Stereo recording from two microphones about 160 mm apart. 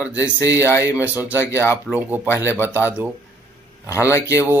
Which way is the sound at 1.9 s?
10° right (ahead or behind).